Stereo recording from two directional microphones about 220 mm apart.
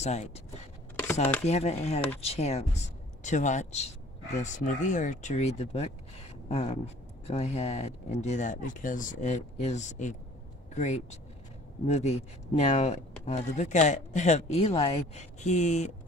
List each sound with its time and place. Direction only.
0.0 s speech: 30° left (ahead or behind)
1.4 s speech: 30° left (ahead or behind)